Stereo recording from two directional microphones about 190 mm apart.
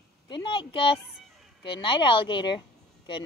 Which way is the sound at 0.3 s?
25° left (ahead or behind).